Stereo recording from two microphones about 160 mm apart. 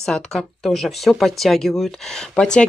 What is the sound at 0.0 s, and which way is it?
Speech, 5° left (ahead or behind).